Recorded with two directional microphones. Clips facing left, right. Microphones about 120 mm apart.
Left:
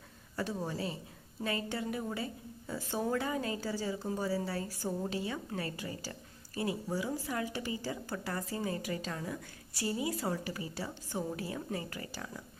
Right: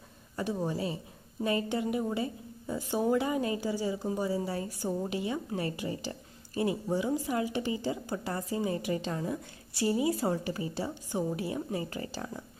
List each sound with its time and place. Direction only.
0.4 s a woman's voice: 15° right (ahead or behind)